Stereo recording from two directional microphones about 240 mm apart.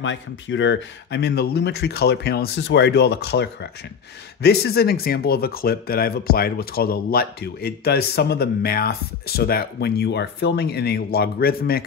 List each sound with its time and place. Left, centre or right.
0.0 s speech: left